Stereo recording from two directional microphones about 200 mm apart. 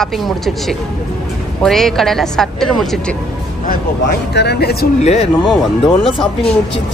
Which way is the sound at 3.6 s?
55° left (ahead or behind).